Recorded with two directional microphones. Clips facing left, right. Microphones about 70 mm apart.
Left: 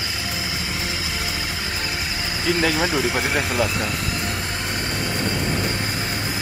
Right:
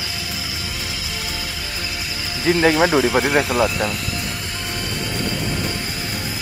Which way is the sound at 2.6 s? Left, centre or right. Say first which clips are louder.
Right 7 dB; right.